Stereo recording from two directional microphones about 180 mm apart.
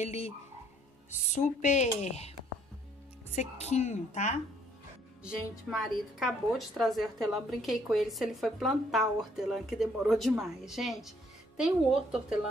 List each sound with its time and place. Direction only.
0.0 s speech: 35° left (ahead or behind)
3.3 s speech: 35° left (ahead or behind)
5.2 s speech: centre (ahead or behind)